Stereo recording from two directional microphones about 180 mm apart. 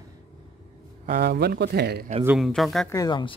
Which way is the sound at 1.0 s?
55° right (ahead or behind).